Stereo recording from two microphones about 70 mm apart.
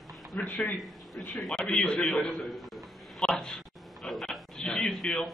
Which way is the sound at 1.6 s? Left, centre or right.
Centre.